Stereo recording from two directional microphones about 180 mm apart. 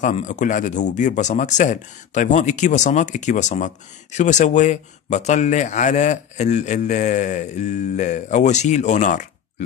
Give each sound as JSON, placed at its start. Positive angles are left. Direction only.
{"t": 0.0, "sound": "speech", "side_deg": 45}